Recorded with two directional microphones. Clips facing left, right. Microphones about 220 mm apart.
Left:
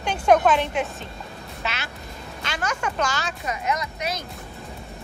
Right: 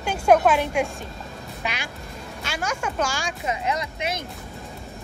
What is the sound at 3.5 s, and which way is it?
Speech, 25° right (ahead or behind).